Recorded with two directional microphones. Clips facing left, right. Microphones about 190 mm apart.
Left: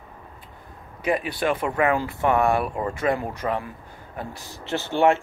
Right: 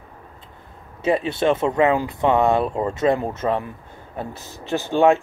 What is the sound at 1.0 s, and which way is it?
Speech, 25° right (ahead or behind).